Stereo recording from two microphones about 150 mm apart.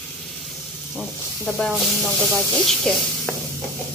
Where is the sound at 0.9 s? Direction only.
5° left (ahead or behind).